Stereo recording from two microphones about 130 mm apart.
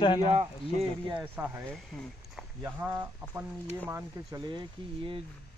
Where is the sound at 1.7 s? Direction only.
5° left (ahead or behind).